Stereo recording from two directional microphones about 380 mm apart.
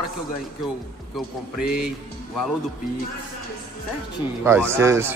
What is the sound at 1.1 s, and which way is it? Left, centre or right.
Speech, centre.